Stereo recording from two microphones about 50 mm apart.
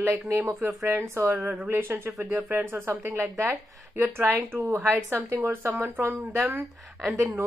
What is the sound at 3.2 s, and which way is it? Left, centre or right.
Speech, right.